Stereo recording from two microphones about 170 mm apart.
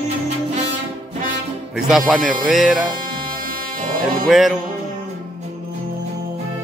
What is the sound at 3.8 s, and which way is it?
Music, 55° right (ahead or behind).